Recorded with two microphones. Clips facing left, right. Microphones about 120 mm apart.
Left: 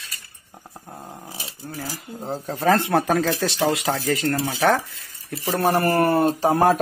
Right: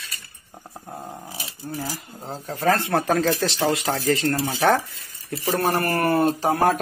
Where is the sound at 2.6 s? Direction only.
15° left (ahead or behind).